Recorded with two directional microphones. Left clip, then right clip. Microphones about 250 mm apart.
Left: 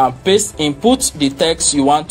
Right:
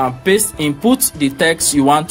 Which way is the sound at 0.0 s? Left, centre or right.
Right.